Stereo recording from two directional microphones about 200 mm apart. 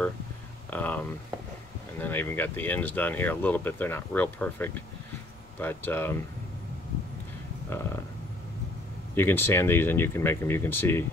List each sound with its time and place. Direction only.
0.7 s speech: 5° left (ahead or behind)
9.1 s speech: 10° left (ahead or behind)